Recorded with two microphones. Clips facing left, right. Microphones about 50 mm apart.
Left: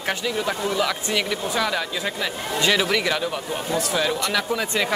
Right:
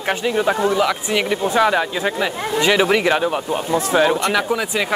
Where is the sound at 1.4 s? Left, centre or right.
Right.